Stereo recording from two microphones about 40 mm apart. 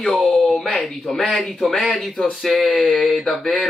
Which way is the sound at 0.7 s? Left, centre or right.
Centre.